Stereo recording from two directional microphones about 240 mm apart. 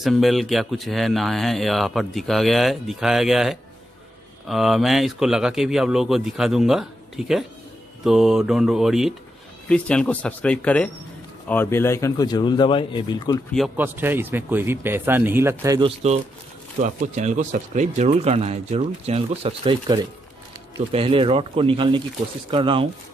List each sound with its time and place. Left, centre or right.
0.0 s speech: centre
13.5 s speech: centre
16.8 s speech: right